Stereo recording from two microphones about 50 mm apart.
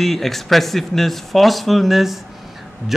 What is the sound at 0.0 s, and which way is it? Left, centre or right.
A man's voice, centre.